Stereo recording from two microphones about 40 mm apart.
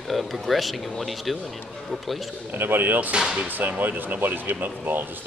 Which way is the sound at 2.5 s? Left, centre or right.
Right.